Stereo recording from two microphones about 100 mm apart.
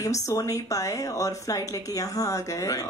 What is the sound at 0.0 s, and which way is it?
Speech, 35° left (ahead or behind).